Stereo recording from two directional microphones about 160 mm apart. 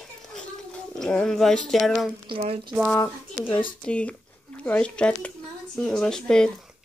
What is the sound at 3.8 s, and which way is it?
Speech, 5° left (ahead or behind).